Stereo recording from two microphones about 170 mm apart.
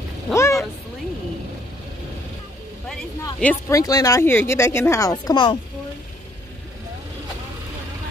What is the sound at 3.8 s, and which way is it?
Speech, 20° left (ahead or behind).